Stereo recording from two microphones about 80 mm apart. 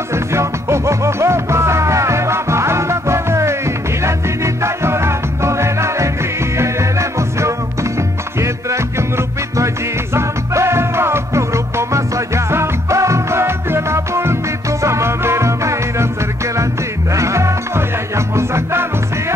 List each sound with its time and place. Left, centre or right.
0.1 s music: right
17.1 s music: right